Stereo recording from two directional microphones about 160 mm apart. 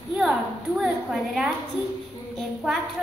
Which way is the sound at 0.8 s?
Centre (ahead or behind).